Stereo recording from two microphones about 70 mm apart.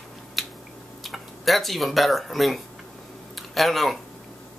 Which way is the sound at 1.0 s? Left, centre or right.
Centre.